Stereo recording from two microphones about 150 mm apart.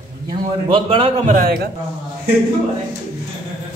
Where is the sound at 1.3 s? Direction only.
80° right.